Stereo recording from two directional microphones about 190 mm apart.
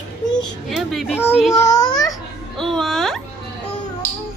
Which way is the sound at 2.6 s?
Centre (ahead or behind).